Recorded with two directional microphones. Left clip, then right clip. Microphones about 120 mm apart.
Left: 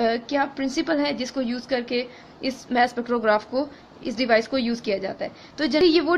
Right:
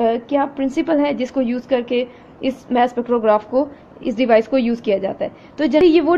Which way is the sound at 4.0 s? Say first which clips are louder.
Right 6 dB; 20° right (ahead or behind).